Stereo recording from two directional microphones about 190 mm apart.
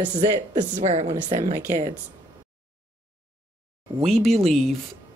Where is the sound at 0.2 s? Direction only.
35° right (ahead or behind).